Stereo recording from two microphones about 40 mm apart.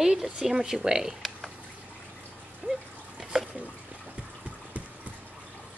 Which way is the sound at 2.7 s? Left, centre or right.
Right.